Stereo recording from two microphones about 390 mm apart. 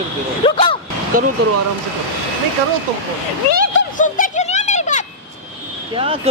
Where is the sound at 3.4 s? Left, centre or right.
Right.